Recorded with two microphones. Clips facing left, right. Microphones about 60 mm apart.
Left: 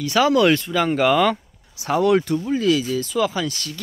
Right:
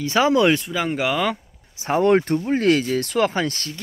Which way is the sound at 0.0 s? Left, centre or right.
Right.